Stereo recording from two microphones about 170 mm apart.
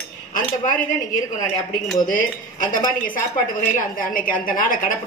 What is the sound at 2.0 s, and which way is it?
Speech, 50° left (ahead or behind).